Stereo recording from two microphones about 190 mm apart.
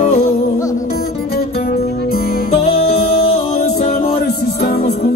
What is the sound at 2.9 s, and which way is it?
Music, 55° left (ahead or behind).